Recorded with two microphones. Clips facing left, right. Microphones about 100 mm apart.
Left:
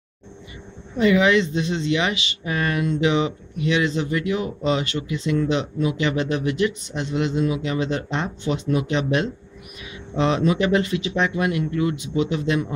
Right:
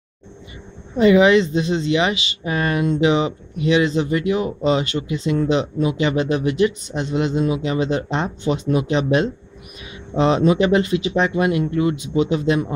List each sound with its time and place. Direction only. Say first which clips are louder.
0.9 s speech: right 4 dB; 25° right (ahead or behind)
1.9 s speech: right 3 dB; 20° right (ahead or behind)
10.1 s speech: right 4 dB; 30° right (ahead or behind)